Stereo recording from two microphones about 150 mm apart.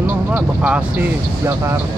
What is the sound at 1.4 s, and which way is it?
Speech, 20° right (ahead or behind).